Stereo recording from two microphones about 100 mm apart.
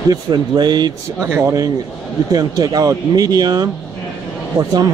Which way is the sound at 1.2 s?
25° right (ahead or behind).